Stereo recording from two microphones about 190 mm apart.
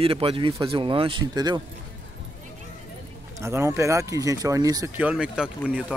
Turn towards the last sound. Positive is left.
turn(degrees=-5)  # may be behind; listen again after turning